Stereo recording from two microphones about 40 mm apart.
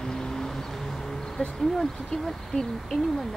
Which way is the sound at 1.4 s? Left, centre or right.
Left.